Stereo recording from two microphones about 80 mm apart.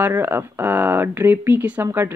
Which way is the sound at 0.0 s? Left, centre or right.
Right.